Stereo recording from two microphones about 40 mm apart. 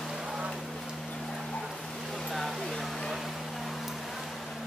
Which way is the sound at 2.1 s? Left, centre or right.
Centre.